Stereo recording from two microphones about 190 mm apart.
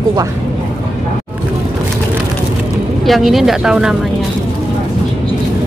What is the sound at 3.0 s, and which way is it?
Speech, centre (ahead or behind).